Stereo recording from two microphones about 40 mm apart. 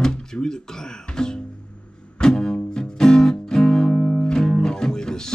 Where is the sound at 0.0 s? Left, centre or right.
Centre.